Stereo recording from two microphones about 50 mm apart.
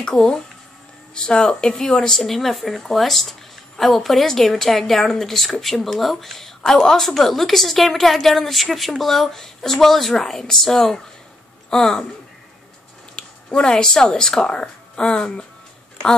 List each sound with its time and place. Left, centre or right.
1.1 s a woman's voice: centre
13.1 s speech: centre